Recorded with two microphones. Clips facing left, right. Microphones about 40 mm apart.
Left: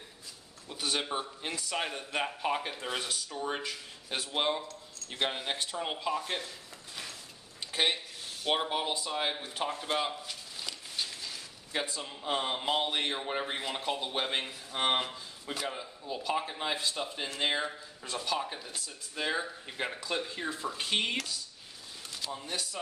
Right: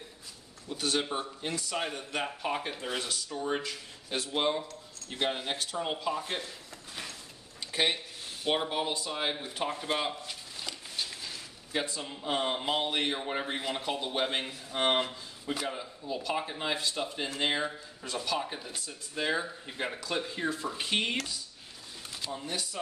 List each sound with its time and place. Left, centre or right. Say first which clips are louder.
0.7 s speech: right 2 dB; centre
5.6 s speech: right 1 dB; centre
6.0 s speech: even; centre
7.7 s speech: right 1 dB; centre
9.1 s speech: even; centre
9.5 s a sound: right 1 dB; centre
11.8 s speech: right 1 dB; centre